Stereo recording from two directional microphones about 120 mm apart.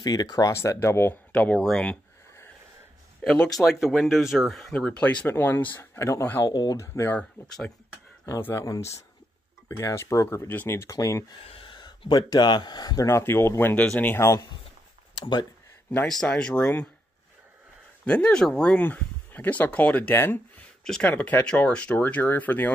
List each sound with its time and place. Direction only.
0.0 s speech: 30° left (ahead or behind)
1.3 s speech: 10° left (ahead or behind)
3.2 s speech: 10° left (ahead or behind)
6.4 s speech: 35° left (ahead or behind)
7.2 s speech: 5° left (ahead or behind)
8.3 s speech: 20° left (ahead or behind)
11.4 s speech: 45° left (ahead or behind); by 14.4 s 20° left (ahead or behind)
15.1 s speech: 40° left (ahead or behind)
16.1 s speech: 5° left (ahead or behind)
18.0 s speech: 10° left (ahead or behind)
20.8 s speech: 5° left (ahead or behind)
21.1 s speech: 15° left (ahead or behind)